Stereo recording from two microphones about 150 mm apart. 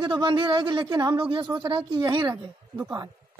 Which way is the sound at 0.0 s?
30° right (ahead or behind).